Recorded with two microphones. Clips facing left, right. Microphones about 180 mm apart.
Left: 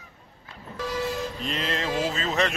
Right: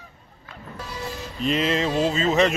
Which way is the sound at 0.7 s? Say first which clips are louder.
Left 7 dB; 90° left.